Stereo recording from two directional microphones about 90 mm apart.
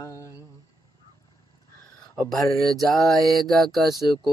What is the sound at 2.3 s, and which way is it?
Mantra, 5° left (ahead or behind).